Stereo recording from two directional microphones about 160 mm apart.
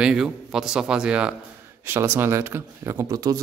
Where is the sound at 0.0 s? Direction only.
5° right (ahead or behind).